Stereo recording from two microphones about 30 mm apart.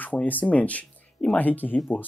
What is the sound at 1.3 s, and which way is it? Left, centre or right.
Speech, left.